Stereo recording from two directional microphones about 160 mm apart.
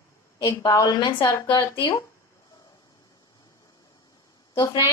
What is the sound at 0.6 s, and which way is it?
A woman's voice, 20° left (ahead or behind).